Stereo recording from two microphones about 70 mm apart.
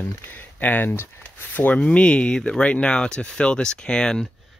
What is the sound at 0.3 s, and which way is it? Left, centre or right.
Speech, left.